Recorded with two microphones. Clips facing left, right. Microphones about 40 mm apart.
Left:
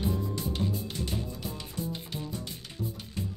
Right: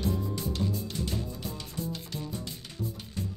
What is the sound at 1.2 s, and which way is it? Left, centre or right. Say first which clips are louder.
Music: even; centre.